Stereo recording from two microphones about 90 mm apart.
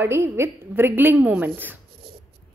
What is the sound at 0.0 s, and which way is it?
A woman's voice, 25° right (ahead or behind).